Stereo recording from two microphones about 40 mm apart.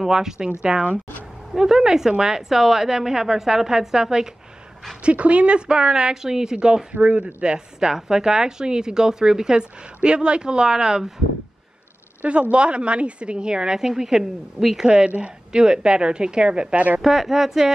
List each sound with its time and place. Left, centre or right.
0.0 s a woman's voice: centre
5.0 s a woman's voice: right
6.9 s speech: right
7.4 s a woman's voice: centre
12.2 s a woman's voice: right; by 14.9 s centre
14.9 s a woman's voice: right
17.0 s a woman's voice: centre